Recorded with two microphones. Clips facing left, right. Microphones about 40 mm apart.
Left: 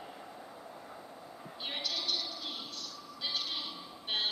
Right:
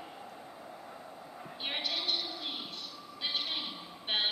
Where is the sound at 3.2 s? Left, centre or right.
Right.